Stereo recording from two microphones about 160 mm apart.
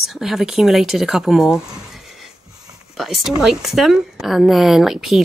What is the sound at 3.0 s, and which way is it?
A woman's voice, centre (ahead or behind).